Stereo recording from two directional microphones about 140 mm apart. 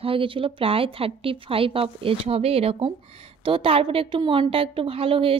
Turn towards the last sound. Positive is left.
turn(degrees=-40)  # may be behind; listen again after turning